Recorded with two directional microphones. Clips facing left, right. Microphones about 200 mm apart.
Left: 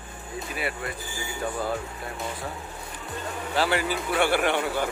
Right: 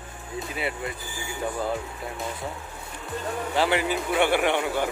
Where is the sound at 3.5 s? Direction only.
20° right (ahead or behind).